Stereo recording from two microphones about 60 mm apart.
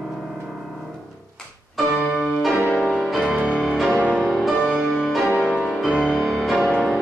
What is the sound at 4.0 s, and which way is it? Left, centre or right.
Music, right.